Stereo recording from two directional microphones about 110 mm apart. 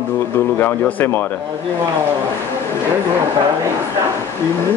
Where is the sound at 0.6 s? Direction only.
15° left (ahead or behind).